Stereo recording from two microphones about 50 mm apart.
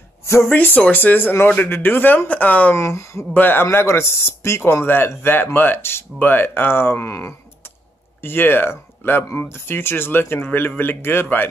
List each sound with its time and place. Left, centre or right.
0.5 s speech: left
2.8 s speech: left
3.3 s speech: left
3.7 s speech: left
8.2 s speech: left